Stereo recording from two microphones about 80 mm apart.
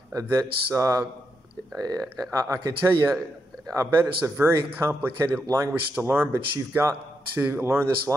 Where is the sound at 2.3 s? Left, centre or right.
Right.